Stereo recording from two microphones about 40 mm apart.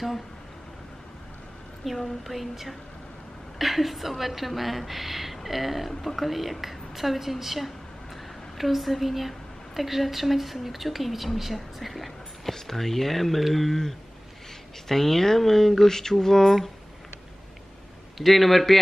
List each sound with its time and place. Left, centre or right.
1.8 s a woman's voice: centre
18.1 s a woman's voice: centre